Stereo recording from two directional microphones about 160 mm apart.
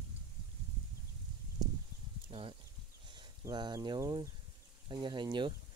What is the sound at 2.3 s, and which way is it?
Speech, 35° right (ahead or behind).